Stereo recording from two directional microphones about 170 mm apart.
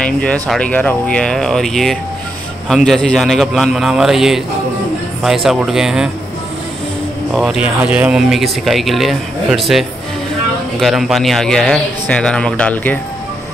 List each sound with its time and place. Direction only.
0.0 s speech: 5° left (ahead or behind)
7.3 s speech: 5° right (ahead or behind)